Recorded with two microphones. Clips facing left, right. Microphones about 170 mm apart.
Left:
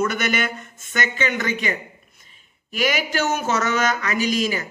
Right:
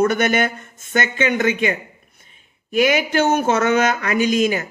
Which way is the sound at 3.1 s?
55° right (ahead or behind).